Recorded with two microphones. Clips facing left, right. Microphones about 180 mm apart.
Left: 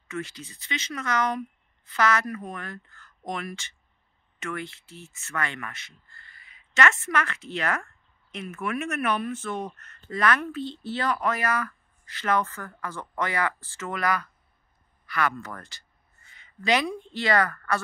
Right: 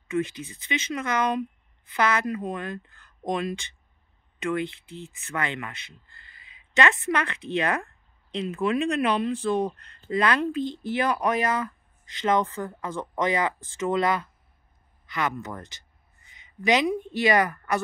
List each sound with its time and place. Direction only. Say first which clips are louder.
0.1 s speech: right 7 dB; 20° right (ahead or behind)